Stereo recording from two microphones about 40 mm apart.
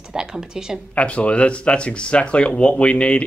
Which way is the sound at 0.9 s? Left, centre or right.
Left.